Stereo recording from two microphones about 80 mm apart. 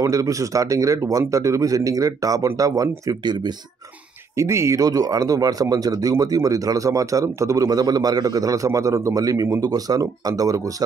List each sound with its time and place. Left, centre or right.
0.0 s speech: right
4.4 s speech: right
4.8 s speech: right